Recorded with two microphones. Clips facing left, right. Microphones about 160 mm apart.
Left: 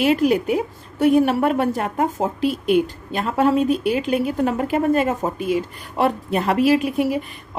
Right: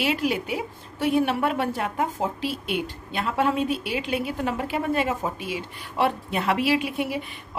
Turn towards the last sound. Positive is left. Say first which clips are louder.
# left 6 dB
turn(degrees=40)  # may be behind; listen again after turning